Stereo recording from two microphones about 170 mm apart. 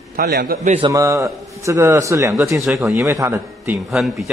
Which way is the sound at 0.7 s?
30° right (ahead or behind).